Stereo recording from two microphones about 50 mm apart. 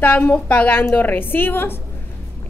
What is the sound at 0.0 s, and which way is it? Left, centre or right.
Speech, left.